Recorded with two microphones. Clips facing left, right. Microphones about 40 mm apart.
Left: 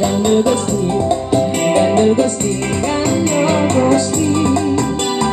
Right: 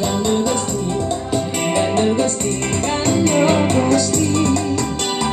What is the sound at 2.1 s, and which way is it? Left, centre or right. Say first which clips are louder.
Music: left 3 dB; left.